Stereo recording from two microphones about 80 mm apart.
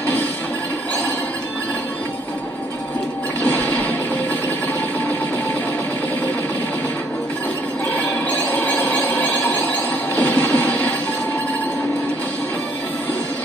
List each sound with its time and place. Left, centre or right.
3.4 s toilet flush: left
7.9 s music: left